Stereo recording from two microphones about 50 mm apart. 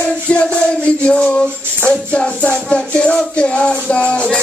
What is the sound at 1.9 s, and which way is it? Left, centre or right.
Music, left.